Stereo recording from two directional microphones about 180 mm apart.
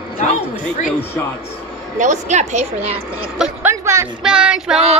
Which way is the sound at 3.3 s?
5° right (ahead or behind).